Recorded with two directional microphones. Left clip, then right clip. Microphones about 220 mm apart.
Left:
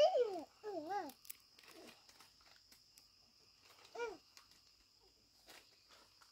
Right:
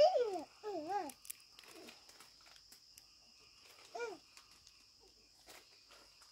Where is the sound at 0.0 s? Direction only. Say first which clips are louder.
Right 2 dB; 40° right (ahead or behind).